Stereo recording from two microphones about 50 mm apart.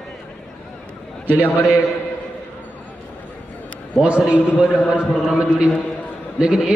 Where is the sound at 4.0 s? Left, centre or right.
Right.